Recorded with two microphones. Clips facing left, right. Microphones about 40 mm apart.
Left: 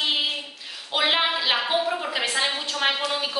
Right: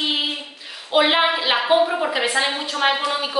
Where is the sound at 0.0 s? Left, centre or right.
Centre.